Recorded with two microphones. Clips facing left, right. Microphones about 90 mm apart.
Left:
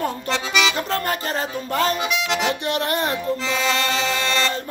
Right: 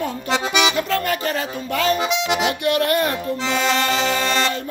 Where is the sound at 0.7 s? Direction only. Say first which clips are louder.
Right 2 dB; 35° left (ahead or behind).